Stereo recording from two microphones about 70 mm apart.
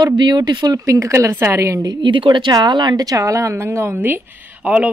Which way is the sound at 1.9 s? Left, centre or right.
Right.